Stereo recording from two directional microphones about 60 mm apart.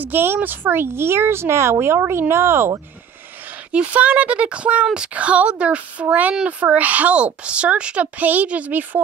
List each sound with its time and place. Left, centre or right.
0.0 s speech: right
3.7 s speech: right